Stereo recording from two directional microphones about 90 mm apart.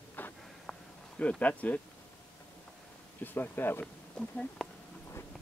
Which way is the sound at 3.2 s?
20° left (ahead or behind).